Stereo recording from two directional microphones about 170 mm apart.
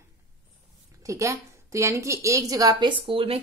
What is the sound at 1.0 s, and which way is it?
A woman's voice, 15° right (ahead or behind).